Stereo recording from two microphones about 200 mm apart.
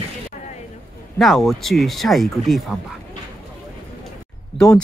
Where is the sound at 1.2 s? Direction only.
Centre (ahead or behind).